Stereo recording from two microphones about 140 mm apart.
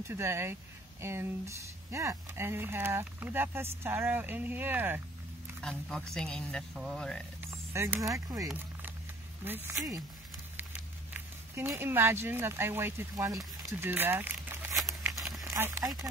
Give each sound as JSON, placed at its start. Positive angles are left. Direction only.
{"t": 0.1, "sound": "speech", "side_deg": -20}
{"t": 5.6, "sound": "speech", "side_deg": 5}
{"t": 7.5, "sound": "speech", "side_deg": -20}
{"t": 13.6, "sound": "crumpling", "side_deg": -15}
{"t": 15.2, "sound": "a sound", "side_deg": 0}
{"t": 15.5, "sound": "speech", "side_deg": -15}